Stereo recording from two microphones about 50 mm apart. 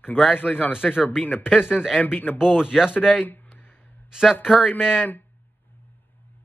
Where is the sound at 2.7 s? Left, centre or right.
Centre.